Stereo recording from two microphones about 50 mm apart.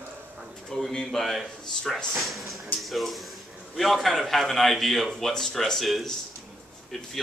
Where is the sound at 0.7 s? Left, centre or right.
Centre.